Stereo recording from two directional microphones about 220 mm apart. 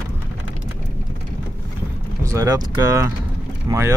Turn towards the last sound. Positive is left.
turn(degrees=-15)  # may be behind; listen again after turning